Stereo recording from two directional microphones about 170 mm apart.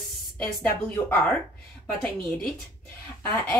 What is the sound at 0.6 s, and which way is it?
Speech, 5° left (ahead or behind).